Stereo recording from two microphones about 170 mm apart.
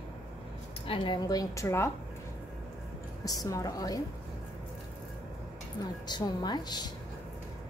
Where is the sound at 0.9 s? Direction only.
25° left (ahead or behind).